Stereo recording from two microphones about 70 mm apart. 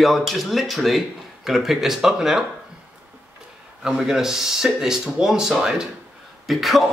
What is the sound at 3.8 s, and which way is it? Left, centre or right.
Speech, centre.